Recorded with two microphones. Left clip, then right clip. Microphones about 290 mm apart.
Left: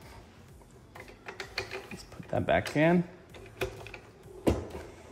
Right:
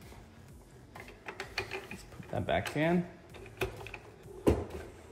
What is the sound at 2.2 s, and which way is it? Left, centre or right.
Speech, left.